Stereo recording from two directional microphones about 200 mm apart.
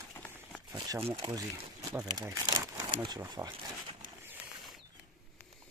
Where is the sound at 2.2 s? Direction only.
20° right (ahead or behind).